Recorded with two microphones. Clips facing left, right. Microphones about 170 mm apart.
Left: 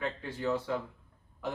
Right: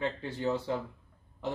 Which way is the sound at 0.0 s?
25° right (ahead or behind).